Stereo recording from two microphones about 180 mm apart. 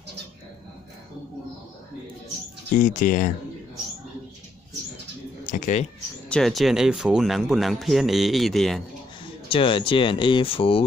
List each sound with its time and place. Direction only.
2.7 s speech: 45° left (ahead or behind)
5.4 s a sound: 45° left (ahead or behind)
6.2 s speech: 5° left (ahead or behind)
9.5 s speech: 30° left (ahead or behind)